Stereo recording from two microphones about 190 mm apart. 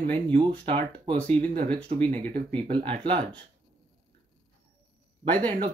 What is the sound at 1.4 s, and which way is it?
Speech, 40° right (ahead or behind).